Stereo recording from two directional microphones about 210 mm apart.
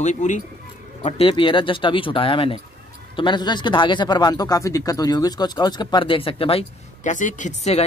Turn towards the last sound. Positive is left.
turn(degrees=35)  # may be behind; listen again after turning